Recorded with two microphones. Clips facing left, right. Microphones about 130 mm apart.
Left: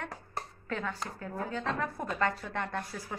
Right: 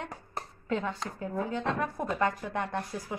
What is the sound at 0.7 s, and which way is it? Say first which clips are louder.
A woman's voice: right 5 dB; 20° right (ahead or behind).